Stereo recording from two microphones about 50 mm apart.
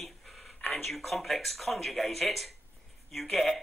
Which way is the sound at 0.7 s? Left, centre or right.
Centre.